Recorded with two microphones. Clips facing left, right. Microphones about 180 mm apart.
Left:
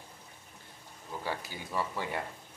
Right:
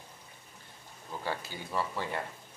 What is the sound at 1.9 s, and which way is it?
Speech, 15° left (ahead or behind).